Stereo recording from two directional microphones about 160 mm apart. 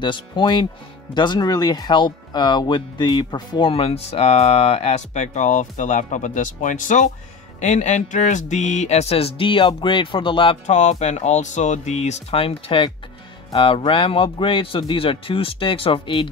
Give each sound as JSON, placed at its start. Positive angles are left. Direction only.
{"t": 0.0, "sound": "speech", "side_deg": 30}
{"t": 10.7, "sound": "speech", "side_deg": 45}